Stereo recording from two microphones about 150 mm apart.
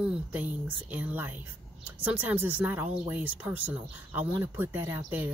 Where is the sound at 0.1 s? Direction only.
10° right (ahead or behind).